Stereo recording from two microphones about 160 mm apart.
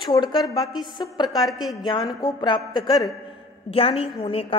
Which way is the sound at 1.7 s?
25° left (ahead or behind).